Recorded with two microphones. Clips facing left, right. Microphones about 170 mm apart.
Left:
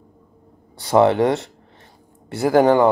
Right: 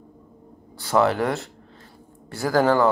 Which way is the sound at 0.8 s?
25° left (ahead or behind).